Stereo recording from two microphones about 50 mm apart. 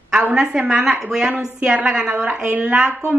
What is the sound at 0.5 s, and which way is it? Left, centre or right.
Speech, centre.